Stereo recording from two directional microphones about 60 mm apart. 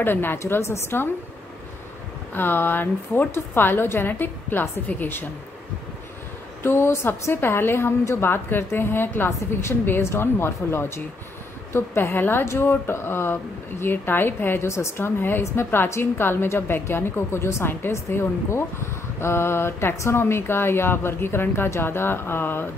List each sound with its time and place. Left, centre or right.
0.0 s a woman's voice: left
2.3 s speech: left
6.6 s a woman's voice: left
14.7 s a woman's voice: left